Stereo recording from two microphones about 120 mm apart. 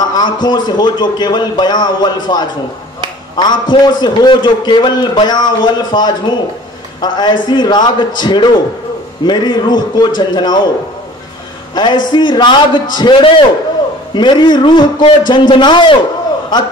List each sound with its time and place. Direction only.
0.1 s a man's voice: 35° left (ahead or behind)
11.7 s a man's voice: 40° left (ahead or behind)